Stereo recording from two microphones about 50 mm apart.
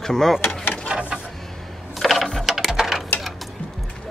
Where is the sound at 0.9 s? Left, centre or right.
Right.